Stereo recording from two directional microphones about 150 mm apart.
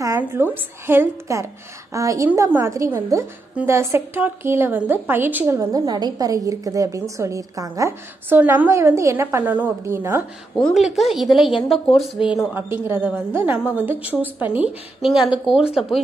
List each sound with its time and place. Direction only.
0.2 s a sound: 15° right (ahead or behind)
0.8 s a woman's voice: 15° right (ahead or behind)
10.5 s a woman's voice: centre (ahead or behind)
12.3 s a woman's voice: 10° right (ahead or behind)